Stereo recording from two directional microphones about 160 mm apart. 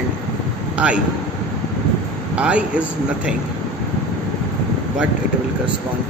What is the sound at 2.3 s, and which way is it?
A man's voice, 5° right (ahead or behind).